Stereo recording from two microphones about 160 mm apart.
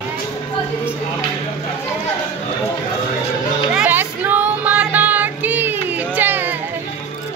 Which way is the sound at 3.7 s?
10° right (ahead or behind).